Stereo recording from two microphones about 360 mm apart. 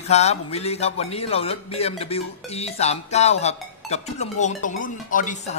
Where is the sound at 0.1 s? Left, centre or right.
Centre.